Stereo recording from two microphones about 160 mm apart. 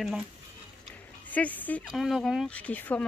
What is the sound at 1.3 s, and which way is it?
Speech, 10° left (ahead or behind).